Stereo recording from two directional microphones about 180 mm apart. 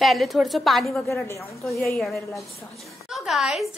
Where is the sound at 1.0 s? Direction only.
15° left (ahead or behind).